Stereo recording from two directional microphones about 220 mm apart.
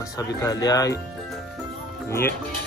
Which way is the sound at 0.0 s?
15° left (ahead or behind).